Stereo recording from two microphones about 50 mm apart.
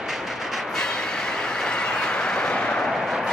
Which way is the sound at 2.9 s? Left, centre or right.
Centre.